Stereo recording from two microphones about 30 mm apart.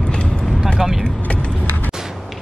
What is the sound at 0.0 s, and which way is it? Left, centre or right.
Vehicle, left.